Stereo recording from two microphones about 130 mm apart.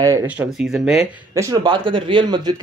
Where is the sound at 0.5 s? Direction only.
5° right (ahead or behind).